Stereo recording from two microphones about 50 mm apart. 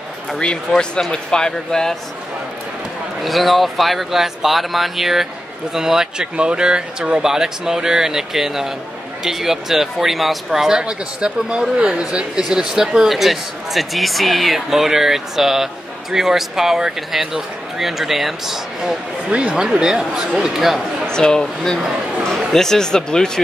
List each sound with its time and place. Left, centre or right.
0.4 s speech: centre
3.2 s speech: centre
19.2 s speech: right; by 20.8 s centre
21.0 s speech: centre